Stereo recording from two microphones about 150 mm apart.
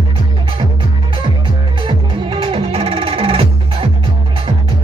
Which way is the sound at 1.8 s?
35° right (ahead or behind).